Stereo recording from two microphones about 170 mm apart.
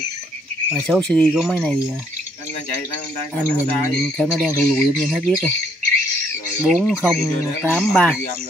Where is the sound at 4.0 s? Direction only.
5° left (ahead or behind).